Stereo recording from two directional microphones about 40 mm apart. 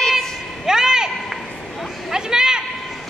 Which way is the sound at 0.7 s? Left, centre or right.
Centre.